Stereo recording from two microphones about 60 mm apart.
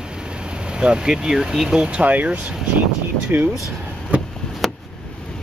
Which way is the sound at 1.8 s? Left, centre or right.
Centre.